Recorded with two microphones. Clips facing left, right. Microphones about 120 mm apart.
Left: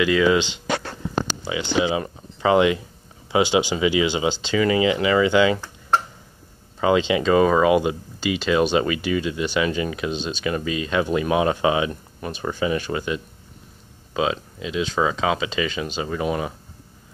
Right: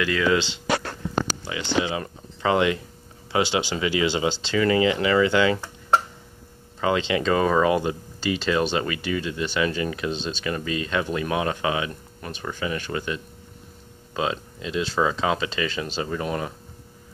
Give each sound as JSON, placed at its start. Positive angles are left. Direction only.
{"t": 0.0, "sound": "speech", "side_deg": 10}
{"t": 6.8, "sound": "speech", "side_deg": 15}